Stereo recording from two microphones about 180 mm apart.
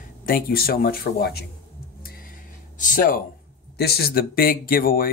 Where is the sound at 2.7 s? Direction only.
45° left (ahead or behind).